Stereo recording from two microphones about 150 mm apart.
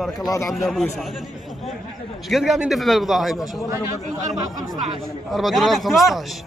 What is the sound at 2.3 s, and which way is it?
Speech, centre (ahead or behind).